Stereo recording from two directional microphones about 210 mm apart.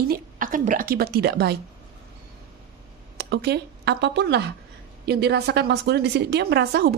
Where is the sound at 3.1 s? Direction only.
50° right (ahead or behind).